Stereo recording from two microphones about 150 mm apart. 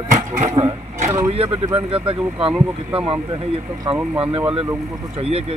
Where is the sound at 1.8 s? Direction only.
40° right (ahead or behind).